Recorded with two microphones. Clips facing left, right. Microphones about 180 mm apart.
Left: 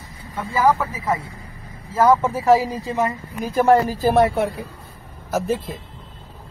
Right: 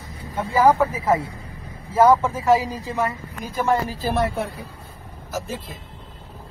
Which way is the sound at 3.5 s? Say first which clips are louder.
Left 6 dB; 55° left (ahead or behind).